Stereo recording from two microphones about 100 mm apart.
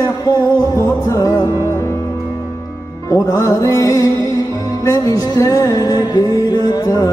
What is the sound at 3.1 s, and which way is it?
Music, 35° left (ahead or behind).